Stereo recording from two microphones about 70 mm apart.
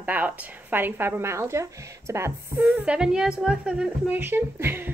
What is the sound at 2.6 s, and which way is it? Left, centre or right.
Speech, right.